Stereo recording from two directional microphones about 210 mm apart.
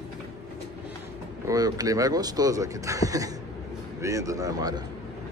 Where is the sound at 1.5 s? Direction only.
15° right (ahead or behind).